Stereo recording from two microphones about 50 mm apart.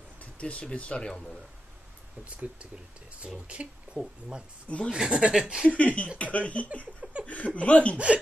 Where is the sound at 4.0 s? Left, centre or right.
Right.